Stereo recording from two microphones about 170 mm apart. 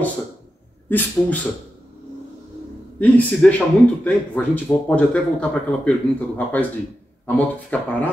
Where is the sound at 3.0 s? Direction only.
10° left (ahead or behind).